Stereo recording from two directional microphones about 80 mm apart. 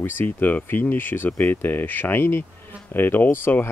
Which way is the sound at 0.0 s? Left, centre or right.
Left.